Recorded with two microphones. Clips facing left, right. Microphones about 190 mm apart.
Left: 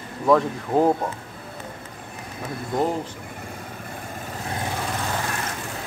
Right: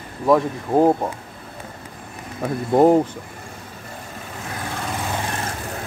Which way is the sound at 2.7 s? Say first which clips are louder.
Right 10 dB; 55° right (ahead or behind).